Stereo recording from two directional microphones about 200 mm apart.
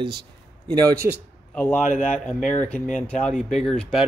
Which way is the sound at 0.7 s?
20° right (ahead or behind).